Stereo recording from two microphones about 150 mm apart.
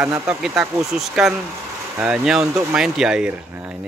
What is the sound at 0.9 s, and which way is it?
Speech, centre (ahead or behind).